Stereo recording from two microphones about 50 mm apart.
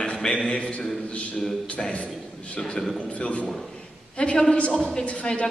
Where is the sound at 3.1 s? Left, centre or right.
Left.